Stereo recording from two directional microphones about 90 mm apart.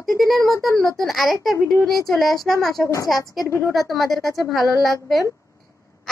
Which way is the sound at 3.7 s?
Centre (ahead or behind).